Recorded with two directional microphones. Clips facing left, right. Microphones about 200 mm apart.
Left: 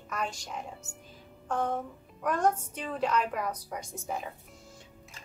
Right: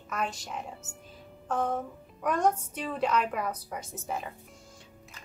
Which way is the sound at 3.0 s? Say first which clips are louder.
Right 1 dB; 5° right (ahead or behind).